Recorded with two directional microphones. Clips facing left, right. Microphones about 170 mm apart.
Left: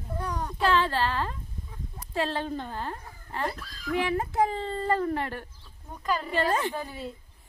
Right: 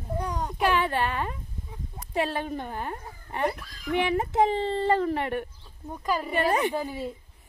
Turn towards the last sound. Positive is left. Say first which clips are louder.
# right 4 dB
turn(degrees=-15)  # may be behind; listen again after turning